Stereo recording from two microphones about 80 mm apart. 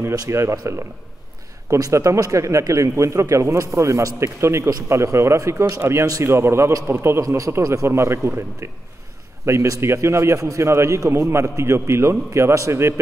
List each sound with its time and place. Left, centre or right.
0.3 s a man's voice: right
6.0 s a man's voice: right
6.3 s a man's voice: right
7.2 s a man's voice: right